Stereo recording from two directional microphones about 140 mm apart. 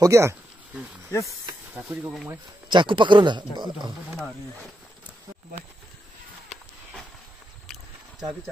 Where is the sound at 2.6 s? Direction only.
35° right (ahead or behind).